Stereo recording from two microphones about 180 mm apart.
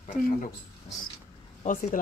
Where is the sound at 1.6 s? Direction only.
40° left (ahead or behind).